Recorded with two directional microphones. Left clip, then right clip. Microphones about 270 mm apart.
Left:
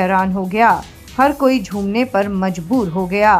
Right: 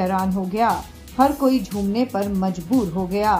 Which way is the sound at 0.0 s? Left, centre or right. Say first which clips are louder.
Left 6 dB; centre.